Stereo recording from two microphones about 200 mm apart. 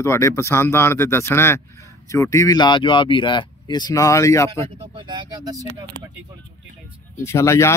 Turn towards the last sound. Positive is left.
turn(degrees=15)  # may be behind; listen again after turning